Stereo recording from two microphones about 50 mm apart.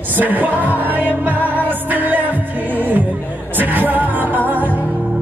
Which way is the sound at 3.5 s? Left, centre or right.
Right.